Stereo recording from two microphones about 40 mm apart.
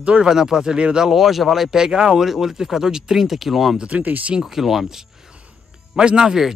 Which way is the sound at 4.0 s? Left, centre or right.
Right.